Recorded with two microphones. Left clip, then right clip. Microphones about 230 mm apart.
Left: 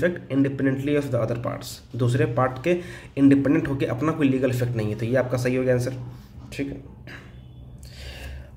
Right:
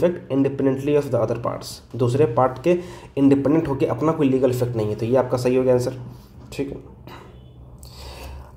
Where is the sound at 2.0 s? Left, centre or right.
Centre.